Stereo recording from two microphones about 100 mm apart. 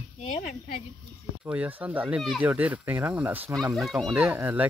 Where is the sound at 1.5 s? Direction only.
15° right (ahead or behind).